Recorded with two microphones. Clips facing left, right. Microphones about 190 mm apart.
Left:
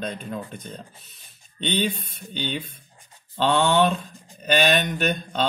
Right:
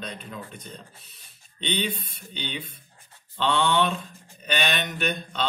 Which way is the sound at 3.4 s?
45° left (ahead or behind).